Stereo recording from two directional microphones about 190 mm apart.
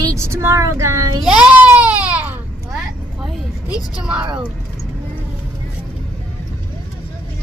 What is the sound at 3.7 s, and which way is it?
Speech, 5° right (ahead or behind).